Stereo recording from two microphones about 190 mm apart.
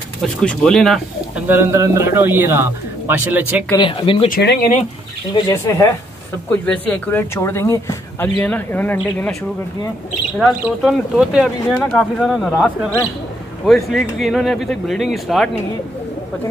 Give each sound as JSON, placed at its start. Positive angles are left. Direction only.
{"t": 0.2, "sound": "speech", "side_deg": 5}
{"t": 1.6, "sound": "speech", "side_deg": -15}
{"t": 3.7, "sound": "speech", "side_deg": 25}
{"t": 4.3, "sound": "speech", "side_deg": 55}
{"t": 5.3, "sound": "speech", "side_deg": 15}
{"t": 10.8, "sound": "speech", "side_deg": -5}